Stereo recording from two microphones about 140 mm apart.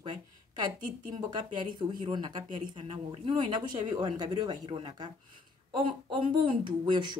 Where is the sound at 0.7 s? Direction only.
70° right (ahead or behind).